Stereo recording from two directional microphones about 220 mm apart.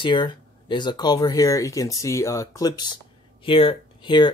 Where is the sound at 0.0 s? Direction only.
20° left (ahead or behind).